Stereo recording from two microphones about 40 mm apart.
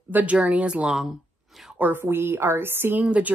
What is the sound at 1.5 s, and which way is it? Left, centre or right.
Speech, centre.